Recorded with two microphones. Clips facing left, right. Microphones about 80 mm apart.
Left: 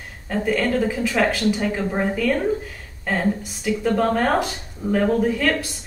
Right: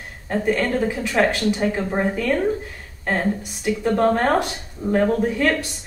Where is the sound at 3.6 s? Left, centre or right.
Centre.